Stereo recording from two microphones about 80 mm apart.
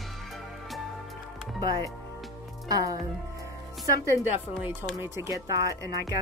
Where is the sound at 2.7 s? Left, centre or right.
Right.